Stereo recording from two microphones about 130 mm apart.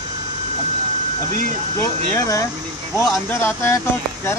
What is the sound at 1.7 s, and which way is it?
Speech, 20° left (ahead or behind).